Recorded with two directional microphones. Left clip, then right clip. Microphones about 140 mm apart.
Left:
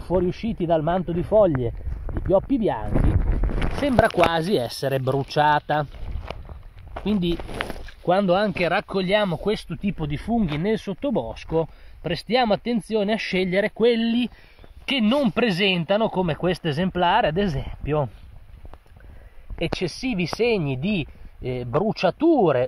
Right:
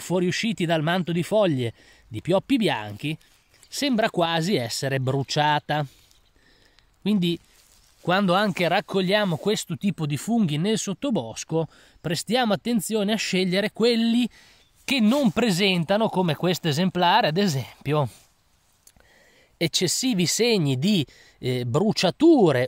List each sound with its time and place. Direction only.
0.2 s speech: 20° right (ahead or behind)
0.8 s speech: 90° right
1.4 s speech: 25° right (ahead or behind)
7.1 s speech: 15° right (ahead or behind)
19.6 s speech: 25° right (ahead or behind)